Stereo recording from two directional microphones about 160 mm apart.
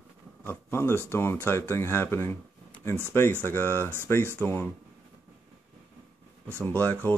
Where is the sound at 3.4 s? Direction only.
15° left (ahead or behind).